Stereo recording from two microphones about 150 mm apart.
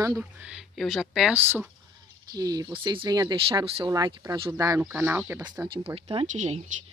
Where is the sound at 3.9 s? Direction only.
25° right (ahead or behind).